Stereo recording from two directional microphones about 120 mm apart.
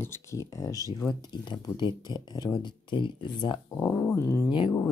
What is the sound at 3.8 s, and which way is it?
Speech, 15° left (ahead or behind).